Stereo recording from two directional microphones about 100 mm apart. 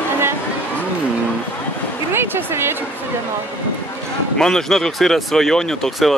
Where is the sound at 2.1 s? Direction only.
25° right (ahead or behind).